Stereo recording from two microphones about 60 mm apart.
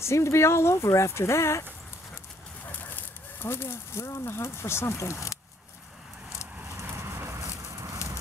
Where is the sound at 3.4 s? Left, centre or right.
Left.